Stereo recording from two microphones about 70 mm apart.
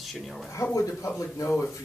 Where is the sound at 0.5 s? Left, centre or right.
Left.